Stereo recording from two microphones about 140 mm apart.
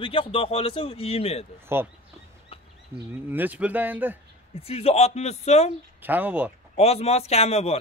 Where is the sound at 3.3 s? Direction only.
10° right (ahead or behind).